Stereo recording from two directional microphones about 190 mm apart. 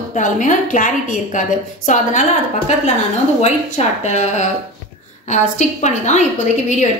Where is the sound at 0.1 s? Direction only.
40° left (ahead or behind).